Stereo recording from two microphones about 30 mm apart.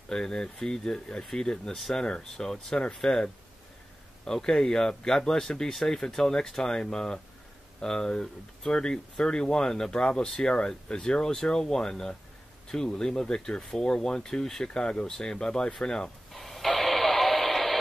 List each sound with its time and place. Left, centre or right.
0.1 s speech: left
2.3 s speech: centre
6.7 s speech: left
10.2 s speech: centre
10.9 s speech: left
14.6 s speech: left
16.3 s radio: centre